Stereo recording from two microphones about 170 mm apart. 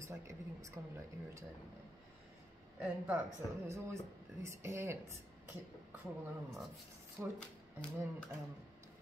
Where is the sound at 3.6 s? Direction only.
15° right (ahead or behind).